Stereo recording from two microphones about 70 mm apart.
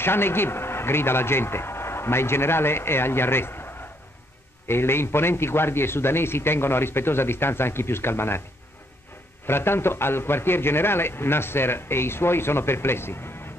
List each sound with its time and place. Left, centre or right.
0.0 s a man's voice: left
9.5 s a man's voice: left